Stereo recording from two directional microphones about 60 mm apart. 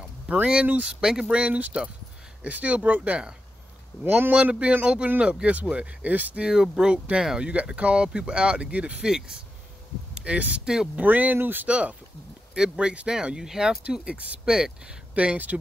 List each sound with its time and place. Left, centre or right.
0.3 s speech: centre
4.0 s speech: right
4.4 s speech: centre
6.4 s speech: centre
11.0 s speech: right
11.6 s speech: right
13.8 s speech: centre
15.1 s speech: right